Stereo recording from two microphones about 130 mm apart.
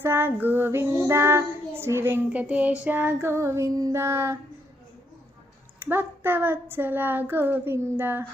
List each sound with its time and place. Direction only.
0.0 s child singing: 15° right (ahead or behind)
5.8 s speech: 15° right (ahead or behind)